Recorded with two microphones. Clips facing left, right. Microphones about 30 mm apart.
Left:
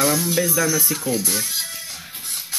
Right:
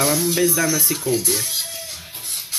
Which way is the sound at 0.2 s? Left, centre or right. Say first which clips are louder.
Right 2 dB; right.